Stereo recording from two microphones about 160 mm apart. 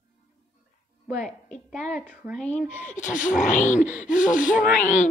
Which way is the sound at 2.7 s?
50° left (ahead or behind).